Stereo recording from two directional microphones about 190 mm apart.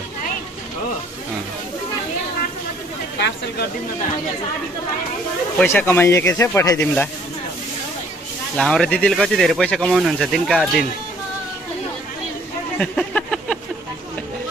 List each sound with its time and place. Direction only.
3.2 s speech: 65° left (ahead or behind)
5.6 s speech: 10° left (ahead or behind)
8.5 s speech: 5° left (ahead or behind)
12.7 s a sound: 5° left (ahead or behind)